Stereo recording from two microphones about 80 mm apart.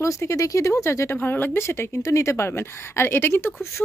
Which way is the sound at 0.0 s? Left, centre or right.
Left.